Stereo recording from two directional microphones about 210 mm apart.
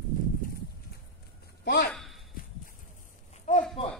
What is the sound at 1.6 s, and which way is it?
Speech, 50° left (ahead or behind).